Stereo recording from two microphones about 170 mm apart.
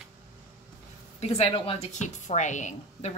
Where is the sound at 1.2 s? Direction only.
35° left (ahead or behind).